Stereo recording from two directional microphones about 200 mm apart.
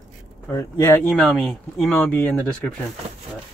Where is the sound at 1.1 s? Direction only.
Centre (ahead or behind).